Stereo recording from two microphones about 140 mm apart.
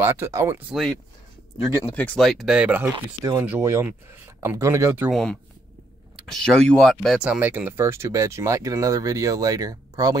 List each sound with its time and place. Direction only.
0.0 s speech: 20° right (ahead or behind)
0.7 s speech: centre (ahead or behind)
1.9 s speech: 10° left (ahead or behind); by 2.9 s 10° right (ahead or behind)
3.2 s speech: 25° right (ahead or behind)
5.1 s speech: 5° left (ahead or behind); by 10.1 s 25° right (ahead or behind)